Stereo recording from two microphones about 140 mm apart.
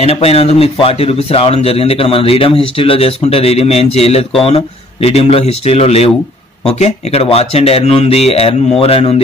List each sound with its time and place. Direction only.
0.0 s speech: 45° left (ahead or behind)